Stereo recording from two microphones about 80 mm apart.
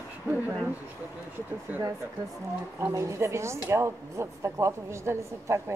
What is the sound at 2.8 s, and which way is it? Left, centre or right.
A woman's voice, right.